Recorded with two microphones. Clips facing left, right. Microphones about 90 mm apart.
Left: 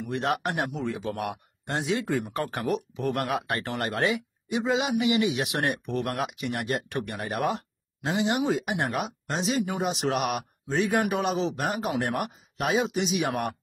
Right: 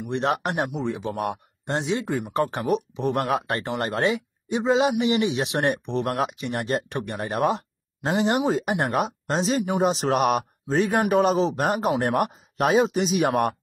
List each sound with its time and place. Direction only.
0.0 s a man's voice: 25° right (ahead or behind)
8.1 s speech: 40° right (ahead or behind)